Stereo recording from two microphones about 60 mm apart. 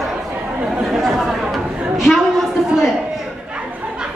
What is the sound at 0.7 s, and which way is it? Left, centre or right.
Chatter, centre.